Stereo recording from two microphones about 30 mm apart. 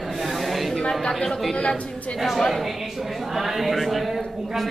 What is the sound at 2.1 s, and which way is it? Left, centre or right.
A man's voice, centre.